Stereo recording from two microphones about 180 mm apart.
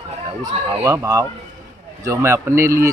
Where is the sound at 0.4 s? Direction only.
15° right (ahead or behind).